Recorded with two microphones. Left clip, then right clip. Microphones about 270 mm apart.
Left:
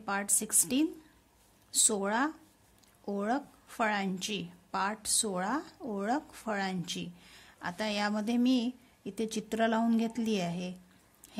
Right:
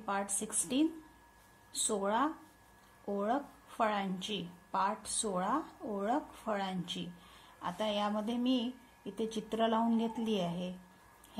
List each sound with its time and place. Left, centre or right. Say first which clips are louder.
0.0 s speech: left 3 dB; left